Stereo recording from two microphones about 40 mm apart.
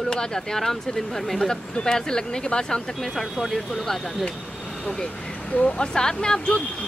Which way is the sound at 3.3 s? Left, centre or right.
Centre.